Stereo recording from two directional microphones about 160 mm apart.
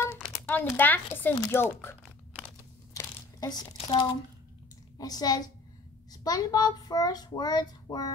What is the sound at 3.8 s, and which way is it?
A child's voice, 30° left (ahead or behind).